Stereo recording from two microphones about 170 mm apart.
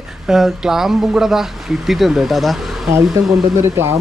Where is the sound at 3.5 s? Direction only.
15° right (ahead or behind).